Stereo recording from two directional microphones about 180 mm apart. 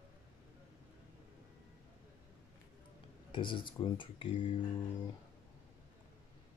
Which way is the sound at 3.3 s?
25° left (ahead or behind).